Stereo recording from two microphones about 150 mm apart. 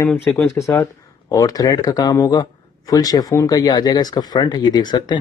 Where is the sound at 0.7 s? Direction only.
20° left (ahead or behind).